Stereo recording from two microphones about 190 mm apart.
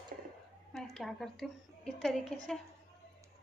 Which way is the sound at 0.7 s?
Centre (ahead or behind).